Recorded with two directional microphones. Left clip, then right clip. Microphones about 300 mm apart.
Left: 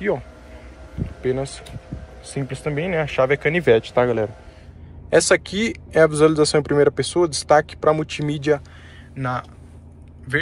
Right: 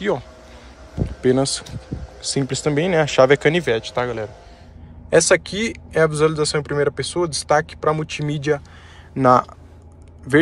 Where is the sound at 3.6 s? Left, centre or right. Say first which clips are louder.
Left 5 dB; centre.